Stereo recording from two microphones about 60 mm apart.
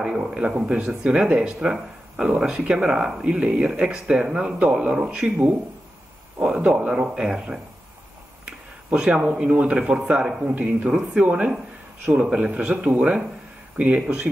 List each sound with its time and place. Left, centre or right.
0.3 s speech: centre
6.4 s speech: centre
10.4 s a man's voice: right
10.9 s a man's voice: centre